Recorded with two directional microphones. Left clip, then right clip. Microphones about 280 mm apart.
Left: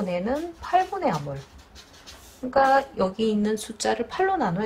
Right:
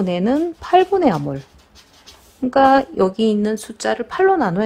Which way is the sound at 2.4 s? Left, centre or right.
Right.